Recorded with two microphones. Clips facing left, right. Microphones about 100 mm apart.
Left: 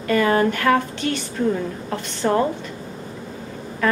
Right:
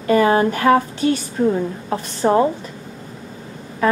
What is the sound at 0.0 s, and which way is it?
A woman's voice, 25° right (ahead or behind).